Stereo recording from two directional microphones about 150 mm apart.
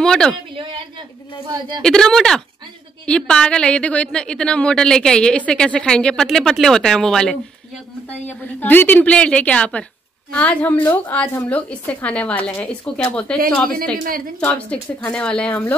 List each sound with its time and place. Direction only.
0.0 s a woman's voice: 5° left (ahead or behind)
1.8 s a woman's voice: 5° left (ahead or behind)
13.9 s a woman's voice: 70° right (ahead or behind)
14.4 s a woman's voice: 10° left (ahead or behind)